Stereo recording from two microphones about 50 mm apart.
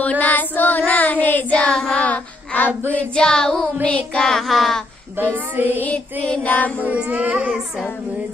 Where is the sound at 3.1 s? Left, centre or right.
Centre.